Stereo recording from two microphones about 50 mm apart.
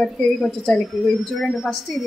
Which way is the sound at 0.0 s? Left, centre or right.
Centre.